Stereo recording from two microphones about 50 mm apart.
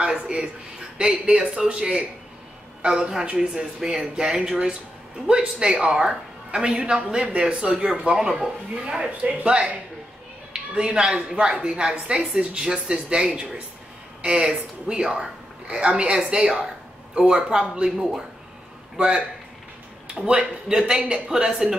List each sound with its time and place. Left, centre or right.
0.0 s a woman's voice: centre
20.2 s a woman's voice: right